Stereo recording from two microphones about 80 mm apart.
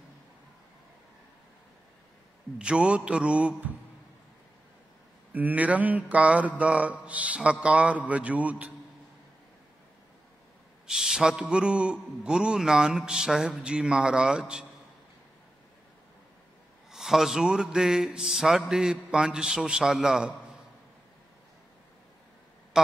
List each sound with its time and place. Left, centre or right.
2.6 s a man's voice: centre
5.3 s mantra: centre
6.6 s a man's voice: centre
10.9 s a man's voice: centre
16.9 s a man's voice: centre